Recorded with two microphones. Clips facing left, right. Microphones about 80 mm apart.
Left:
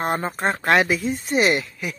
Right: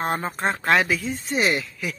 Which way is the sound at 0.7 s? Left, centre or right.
Left.